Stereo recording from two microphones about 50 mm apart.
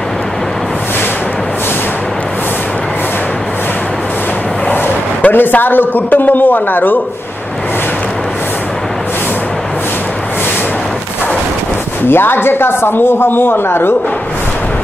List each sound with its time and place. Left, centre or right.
5.2 s a man's voice: left
12.1 s speech: left